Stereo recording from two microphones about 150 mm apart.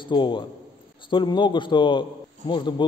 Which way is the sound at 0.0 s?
30° left (ahead or behind).